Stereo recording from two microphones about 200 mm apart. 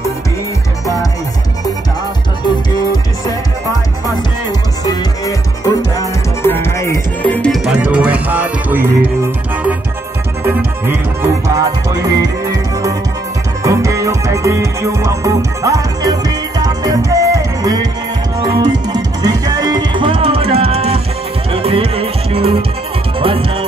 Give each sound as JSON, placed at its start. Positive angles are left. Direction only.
{"t": 2.4, "sound": "music", "side_deg": 20}
{"t": 10.4, "sound": "music", "side_deg": -10}